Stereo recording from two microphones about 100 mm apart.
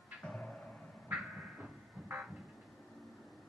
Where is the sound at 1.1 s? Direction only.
5° right (ahead or behind).